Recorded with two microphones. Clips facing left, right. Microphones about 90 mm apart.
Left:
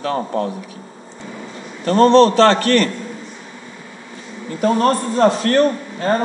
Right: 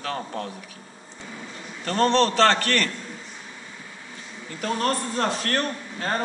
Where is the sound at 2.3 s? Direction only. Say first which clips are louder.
Left 7 dB; 20° left (ahead or behind).